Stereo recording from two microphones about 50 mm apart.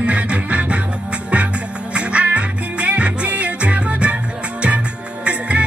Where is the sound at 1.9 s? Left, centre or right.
Right.